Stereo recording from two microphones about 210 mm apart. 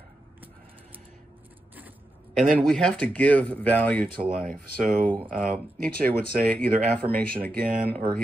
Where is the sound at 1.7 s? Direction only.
10° right (ahead or behind).